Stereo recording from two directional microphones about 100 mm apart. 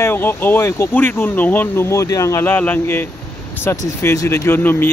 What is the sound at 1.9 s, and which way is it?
Speech, 30° left (ahead or behind).